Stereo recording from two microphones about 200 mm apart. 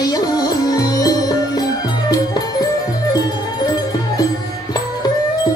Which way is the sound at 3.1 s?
20° left (ahead or behind).